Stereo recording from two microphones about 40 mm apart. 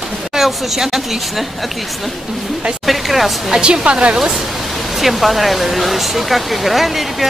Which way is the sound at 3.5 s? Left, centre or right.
Right.